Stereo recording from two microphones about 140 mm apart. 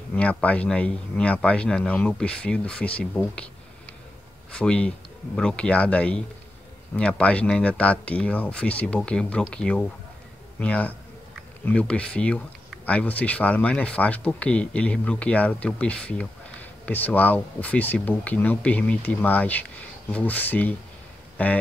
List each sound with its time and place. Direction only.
0.1 s speech: 10° left (ahead or behind)
4.5 s speech: 5° left (ahead or behind)
21.4 s a sound: 10° left (ahead or behind)